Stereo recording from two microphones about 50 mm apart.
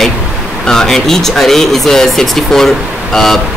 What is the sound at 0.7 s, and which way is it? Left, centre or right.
Speech, centre.